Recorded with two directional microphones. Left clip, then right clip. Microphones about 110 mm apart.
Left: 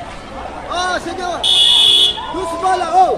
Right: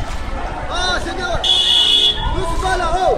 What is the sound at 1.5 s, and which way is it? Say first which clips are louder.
Buzzer: left 4 dB; 15° right (ahead or behind).